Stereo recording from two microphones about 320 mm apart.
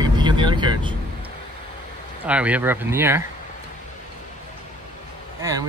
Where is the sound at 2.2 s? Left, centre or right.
Centre.